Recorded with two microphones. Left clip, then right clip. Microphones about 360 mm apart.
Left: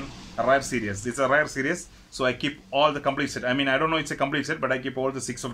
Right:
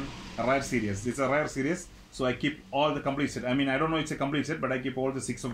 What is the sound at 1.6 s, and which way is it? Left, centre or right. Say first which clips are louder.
Speech: left 4 dB; left.